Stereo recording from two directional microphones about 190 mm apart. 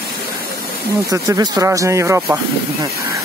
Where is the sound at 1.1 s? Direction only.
15° right (ahead or behind).